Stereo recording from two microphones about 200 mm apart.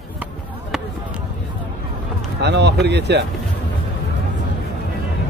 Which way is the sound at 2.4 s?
60° right (ahead or behind).